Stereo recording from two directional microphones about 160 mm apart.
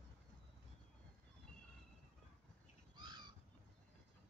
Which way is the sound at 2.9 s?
25° right (ahead or behind).